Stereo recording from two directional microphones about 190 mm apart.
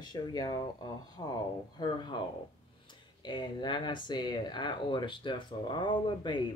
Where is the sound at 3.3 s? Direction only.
25° left (ahead or behind).